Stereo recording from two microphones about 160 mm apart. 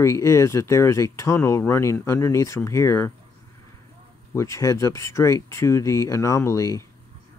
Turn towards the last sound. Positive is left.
turn(degrees=20)  # may be behind; listen again after turning